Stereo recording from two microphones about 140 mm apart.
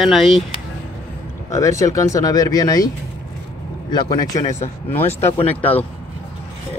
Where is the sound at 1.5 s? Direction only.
20° left (ahead or behind).